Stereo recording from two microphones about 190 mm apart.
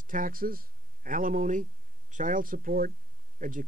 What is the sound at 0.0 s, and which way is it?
Speech, 45° right (ahead or behind).